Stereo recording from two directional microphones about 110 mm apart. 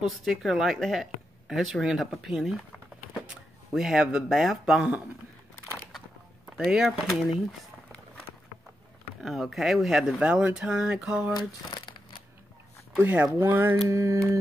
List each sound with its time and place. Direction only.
0.0 s speech: centre (ahead or behind)
6.5 s speech: 5° right (ahead or behind)
9.2 s speech: centre (ahead or behind)
11.3 s crumpling: 40° left (ahead or behind)
12.9 s speech: 15° right (ahead or behind)
13.8 s mantra: 25° right (ahead or behind)